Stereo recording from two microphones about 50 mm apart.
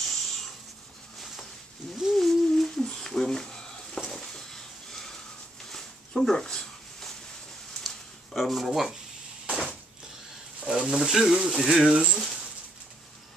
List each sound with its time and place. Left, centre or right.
0.0 s writing: centre
2.1 s a sound: centre
10.6 s speech: centre
12.1 s speech: centre